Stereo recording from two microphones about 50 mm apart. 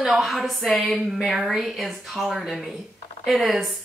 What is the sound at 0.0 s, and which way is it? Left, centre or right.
Speech, centre.